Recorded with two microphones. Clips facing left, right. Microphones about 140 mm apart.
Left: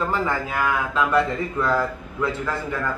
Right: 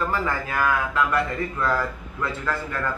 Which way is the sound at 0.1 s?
15° left (ahead or behind).